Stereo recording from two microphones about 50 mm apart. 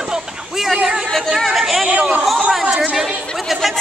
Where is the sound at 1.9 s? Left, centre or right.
Centre.